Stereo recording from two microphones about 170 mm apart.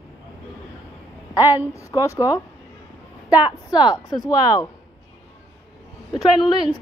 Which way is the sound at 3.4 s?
25° left (ahead or behind).